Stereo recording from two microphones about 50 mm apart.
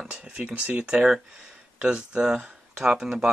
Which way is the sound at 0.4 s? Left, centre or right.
Right.